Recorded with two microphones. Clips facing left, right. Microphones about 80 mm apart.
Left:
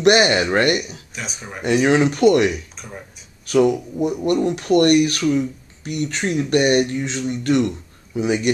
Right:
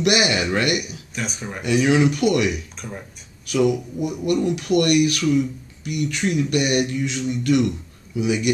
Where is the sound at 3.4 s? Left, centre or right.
Left.